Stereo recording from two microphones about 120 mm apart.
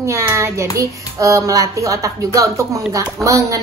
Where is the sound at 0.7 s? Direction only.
25° right (ahead or behind).